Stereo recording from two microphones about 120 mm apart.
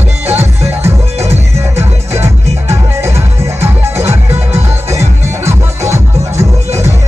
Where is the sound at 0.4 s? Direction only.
20° right (ahead or behind).